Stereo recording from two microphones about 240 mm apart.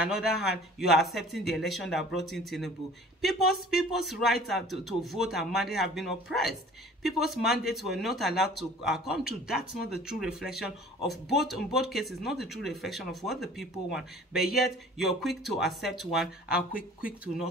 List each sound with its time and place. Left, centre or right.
0.0 s speech: centre